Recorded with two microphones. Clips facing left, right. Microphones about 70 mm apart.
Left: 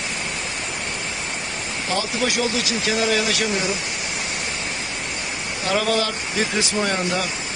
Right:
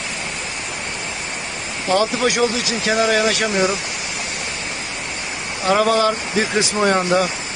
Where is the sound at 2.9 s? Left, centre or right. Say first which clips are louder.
Right 5 dB; right.